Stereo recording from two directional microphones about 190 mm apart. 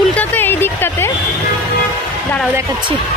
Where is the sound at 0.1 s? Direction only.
10° left (ahead or behind).